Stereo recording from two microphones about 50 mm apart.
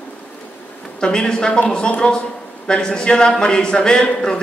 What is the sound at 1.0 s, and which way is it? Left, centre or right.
A man's voice, centre.